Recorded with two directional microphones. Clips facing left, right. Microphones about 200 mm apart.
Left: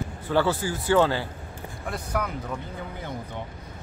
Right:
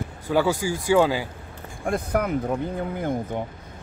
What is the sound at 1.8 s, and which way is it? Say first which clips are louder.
Speech: right 6 dB; 55° right (ahead or behind).